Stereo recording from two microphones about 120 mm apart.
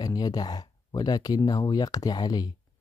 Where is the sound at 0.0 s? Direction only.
35° left (ahead or behind).